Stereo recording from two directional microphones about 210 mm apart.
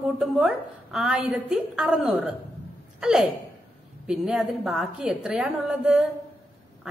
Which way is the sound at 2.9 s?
5° right (ahead or behind).